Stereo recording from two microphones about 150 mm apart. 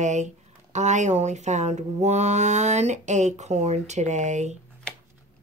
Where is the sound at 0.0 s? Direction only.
50° right (ahead or behind).